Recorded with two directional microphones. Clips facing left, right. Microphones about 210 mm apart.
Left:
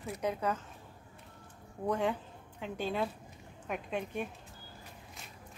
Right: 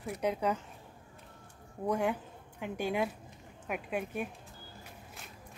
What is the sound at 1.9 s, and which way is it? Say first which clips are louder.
A woman's voice: right 1 dB; 10° right (ahead or behind).